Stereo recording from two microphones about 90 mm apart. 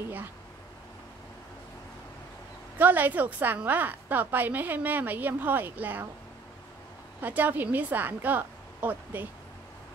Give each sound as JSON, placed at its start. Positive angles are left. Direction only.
{"t": 2.8, "sound": "a woman's voice", "side_deg": -20}
{"t": 7.2, "sound": "a woman's voice", "side_deg": -20}